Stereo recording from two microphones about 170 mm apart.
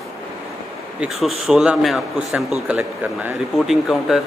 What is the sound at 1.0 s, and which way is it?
Speech, centre (ahead or behind).